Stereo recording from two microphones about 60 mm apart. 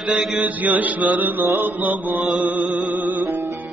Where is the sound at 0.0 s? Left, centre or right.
Centre.